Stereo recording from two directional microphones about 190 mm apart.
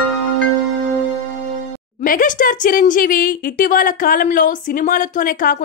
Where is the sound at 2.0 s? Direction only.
45° left (ahead or behind).